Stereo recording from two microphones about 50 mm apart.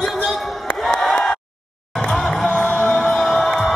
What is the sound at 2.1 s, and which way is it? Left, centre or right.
Music, centre.